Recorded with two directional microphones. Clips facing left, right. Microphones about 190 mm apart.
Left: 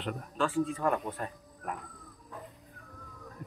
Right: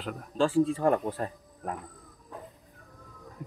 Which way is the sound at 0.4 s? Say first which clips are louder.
Right 6 dB; 30° right (ahead or behind).